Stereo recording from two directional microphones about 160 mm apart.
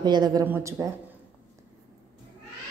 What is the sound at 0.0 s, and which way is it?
Speech, 25° right (ahead or behind).